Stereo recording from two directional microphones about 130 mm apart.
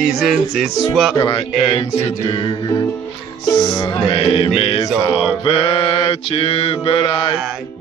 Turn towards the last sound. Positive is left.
turn(degrees=45)  # may be behind; listen again after turning